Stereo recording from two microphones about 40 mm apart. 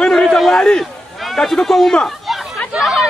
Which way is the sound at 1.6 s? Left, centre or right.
Centre.